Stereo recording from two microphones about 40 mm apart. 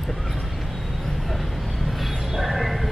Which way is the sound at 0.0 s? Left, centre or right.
Centre.